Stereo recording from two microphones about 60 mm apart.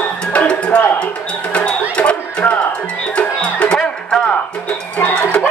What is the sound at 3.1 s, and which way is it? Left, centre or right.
Music, centre.